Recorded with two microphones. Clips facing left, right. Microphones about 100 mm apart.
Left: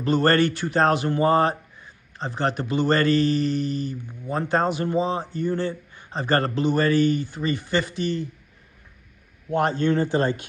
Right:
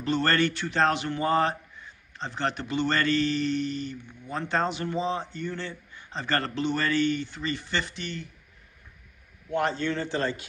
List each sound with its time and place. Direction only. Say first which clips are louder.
0.0 s speech: left 5 dB; 45° left (ahead or behind)
9.5 s speech: left 6 dB; 50° left (ahead or behind)